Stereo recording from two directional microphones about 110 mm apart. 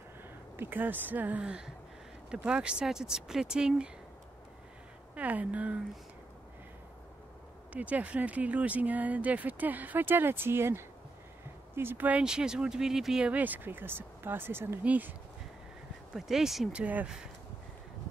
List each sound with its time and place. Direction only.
0.2 s speech: 20° right (ahead or behind)
5.1 s speech: 15° right (ahead or behind)
7.7 s speech: 10° right (ahead or behind)
16.2 s speech: centre (ahead or behind)